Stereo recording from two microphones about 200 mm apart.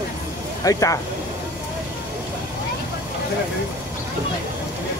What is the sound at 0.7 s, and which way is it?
Speech, 15° left (ahead or behind).